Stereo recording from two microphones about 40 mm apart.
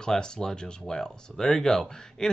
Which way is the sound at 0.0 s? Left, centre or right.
Centre.